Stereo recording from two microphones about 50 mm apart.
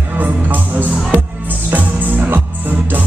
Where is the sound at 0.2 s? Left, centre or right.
Right.